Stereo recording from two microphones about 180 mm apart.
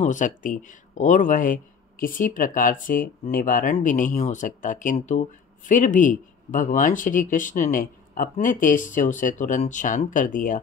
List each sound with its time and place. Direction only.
0.0 s speech: 45° left (ahead or behind)